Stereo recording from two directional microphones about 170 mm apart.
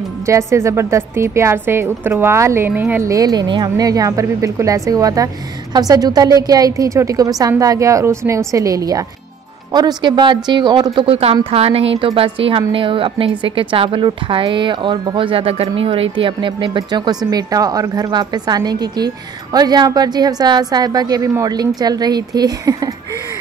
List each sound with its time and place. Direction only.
0.3 s a woman's voice: 15° right (ahead or behind)